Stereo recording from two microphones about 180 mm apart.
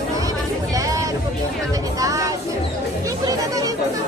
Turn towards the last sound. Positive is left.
turn(degrees=-20)  # may be behind; listen again after turning